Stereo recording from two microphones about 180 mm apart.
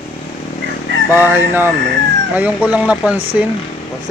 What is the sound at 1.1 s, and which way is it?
Speech, 10° right (ahead or behind).